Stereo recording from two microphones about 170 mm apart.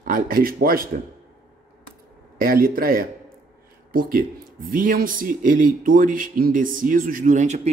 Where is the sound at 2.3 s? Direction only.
60° right (ahead or behind).